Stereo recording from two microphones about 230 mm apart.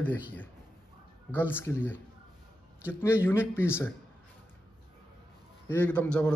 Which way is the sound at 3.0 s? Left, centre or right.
Centre.